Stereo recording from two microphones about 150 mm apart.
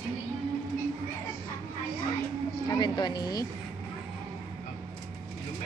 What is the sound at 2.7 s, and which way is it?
Speech, 25° left (ahead or behind).